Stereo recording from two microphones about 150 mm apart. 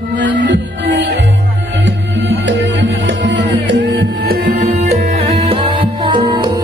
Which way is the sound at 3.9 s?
90° right.